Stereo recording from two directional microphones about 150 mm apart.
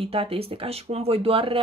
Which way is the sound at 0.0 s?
40° right (ahead or behind).